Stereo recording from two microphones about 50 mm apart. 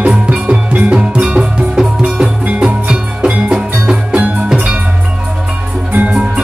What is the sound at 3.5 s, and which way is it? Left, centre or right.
Music, centre.